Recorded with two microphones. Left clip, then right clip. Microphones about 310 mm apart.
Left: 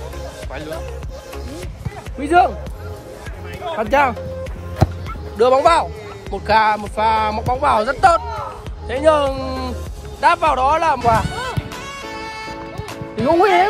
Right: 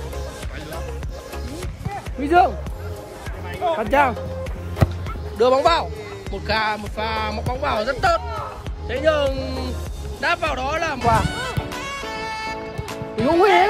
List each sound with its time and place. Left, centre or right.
2.2 s a man's voice: left
3.5 s speech: right
3.8 s a man's voice: left
4.8 s music: centre
5.4 s a man's voice: left
6.4 s music: centre